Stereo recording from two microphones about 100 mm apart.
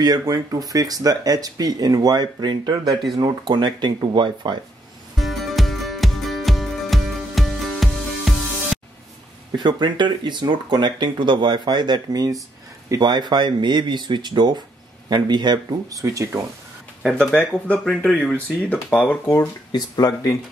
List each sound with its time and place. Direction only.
0.0 s speech: 40° right (ahead or behind)
5.1 s music: centre (ahead or behind)
9.6 s speech: 50° right (ahead or behind)
17.1 s speech: 10° left (ahead or behind)
19.7 s speech: 40° left (ahead or behind)